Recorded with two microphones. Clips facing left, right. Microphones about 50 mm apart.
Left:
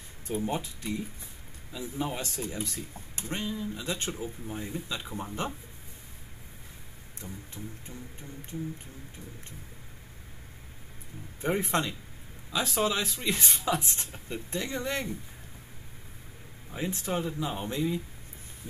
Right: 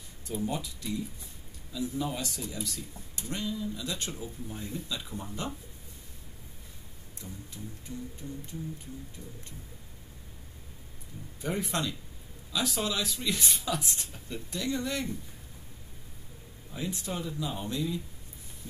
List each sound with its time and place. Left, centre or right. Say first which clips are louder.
0.3 s speech: left 2 dB; left
7.2 s speech: left 2 dB; left
11.4 s speech: left 4 dB; left
16.7 s speech: left 4 dB; left